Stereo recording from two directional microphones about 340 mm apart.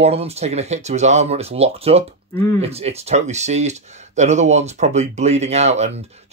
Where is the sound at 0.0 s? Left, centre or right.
Centre.